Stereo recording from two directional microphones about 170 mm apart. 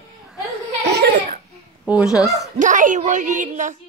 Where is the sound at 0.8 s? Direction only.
90° right.